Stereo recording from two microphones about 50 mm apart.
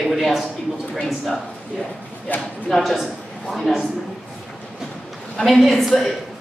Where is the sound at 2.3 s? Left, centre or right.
Left.